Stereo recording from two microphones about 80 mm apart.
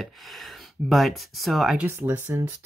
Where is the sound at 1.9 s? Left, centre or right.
Right.